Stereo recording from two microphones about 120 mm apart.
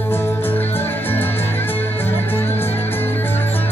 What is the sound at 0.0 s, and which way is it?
Music, 20° left (ahead or behind).